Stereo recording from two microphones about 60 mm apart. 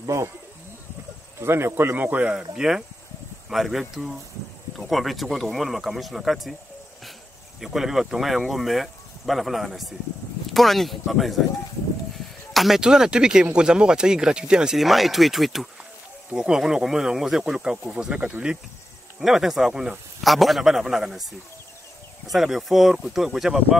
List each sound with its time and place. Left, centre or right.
0.0 s speech: right
1.4 s speech: right
2.2 s speech: centre
7.6 s speech: centre
12.5 s speech: centre
14.8 s speech: centre
19.1 s speech: centre
22.3 s speech: centre